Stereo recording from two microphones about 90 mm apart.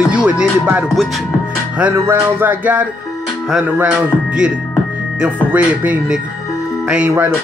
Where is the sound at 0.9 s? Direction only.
Centre (ahead or behind).